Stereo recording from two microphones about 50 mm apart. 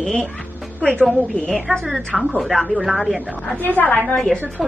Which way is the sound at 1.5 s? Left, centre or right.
Centre.